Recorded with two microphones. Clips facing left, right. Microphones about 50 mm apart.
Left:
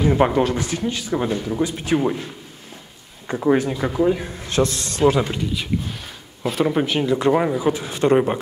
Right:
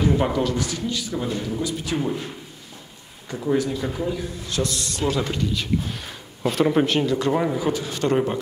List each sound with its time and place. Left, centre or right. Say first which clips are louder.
0.0 s a man's voice: left 4 dB; left
3.3 s a man's voice: left 4 dB; left
5.2 s speech: left 1 dB; centre
6.4 s speech: right 1 dB; centre
7.1 s speech: left 4 dB; centre